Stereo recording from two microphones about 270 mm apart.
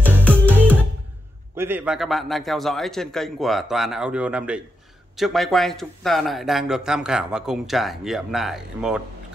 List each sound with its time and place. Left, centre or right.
0.0 s music: centre
1.6 s a man's voice: centre